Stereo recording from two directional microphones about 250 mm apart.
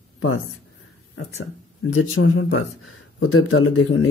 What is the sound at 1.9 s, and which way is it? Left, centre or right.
Speech, left.